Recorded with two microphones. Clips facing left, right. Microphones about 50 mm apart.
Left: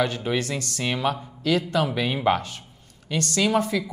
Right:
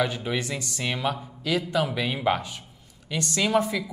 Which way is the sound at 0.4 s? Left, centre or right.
Centre.